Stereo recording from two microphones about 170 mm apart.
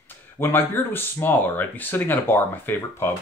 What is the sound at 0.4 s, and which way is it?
Speech, 10° left (ahead or behind).